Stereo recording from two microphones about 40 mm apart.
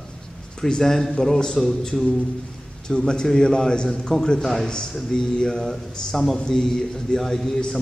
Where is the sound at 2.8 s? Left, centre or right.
Centre.